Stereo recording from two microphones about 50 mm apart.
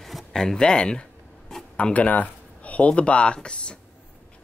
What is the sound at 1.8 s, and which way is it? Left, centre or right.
Speech, left.